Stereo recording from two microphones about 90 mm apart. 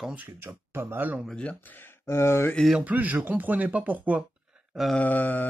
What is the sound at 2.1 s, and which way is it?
Speech, 30° left (ahead or behind).